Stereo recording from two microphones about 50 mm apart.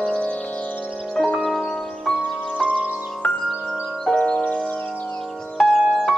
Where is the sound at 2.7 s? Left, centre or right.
Right.